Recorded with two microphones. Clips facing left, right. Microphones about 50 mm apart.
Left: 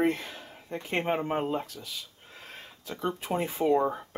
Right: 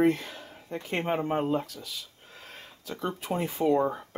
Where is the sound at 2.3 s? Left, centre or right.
Centre.